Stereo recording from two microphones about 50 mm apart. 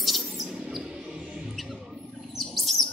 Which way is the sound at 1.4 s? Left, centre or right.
Centre.